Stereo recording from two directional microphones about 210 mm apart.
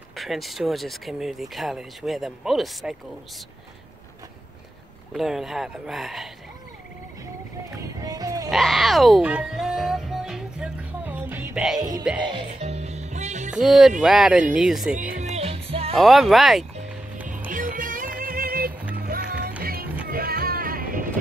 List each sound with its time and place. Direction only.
0.1 s speech: centre (ahead or behind)
5.1 s speech: centre (ahead or behind)
7.7 s music: 15° right (ahead or behind)
8.5 s music: centre (ahead or behind)
12.3 s music: 25° right (ahead or behind)
13.5 s speech: centre (ahead or behind)
15.1 s music: 30° right (ahead or behind)
16.0 s speech: centre (ahead or behind)
17.5 s music: 40° right (ahead or behind)
20.1 s vehicle: 45° right (ahead or behind)